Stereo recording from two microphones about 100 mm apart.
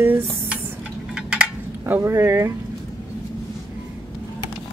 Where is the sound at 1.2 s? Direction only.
10° right (ahead or behind).